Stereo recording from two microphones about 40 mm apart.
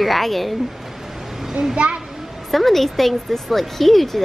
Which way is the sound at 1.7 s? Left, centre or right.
Right.